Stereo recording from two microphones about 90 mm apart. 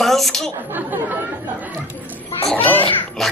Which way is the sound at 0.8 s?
20° right (ahead or behind).